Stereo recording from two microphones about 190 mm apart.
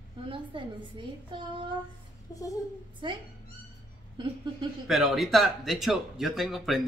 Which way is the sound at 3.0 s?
25° right (ahead or behind).